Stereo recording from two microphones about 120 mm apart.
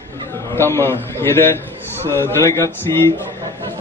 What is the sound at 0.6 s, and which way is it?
A man's voice, 20° left (ahead or behind).